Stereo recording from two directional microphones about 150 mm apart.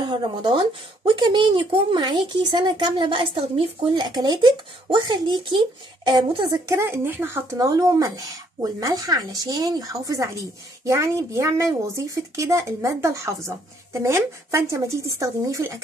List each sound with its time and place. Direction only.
0.0 s speech: 30° right (ahead or behind)
6.7 s speech: 15° right (ahead or behind)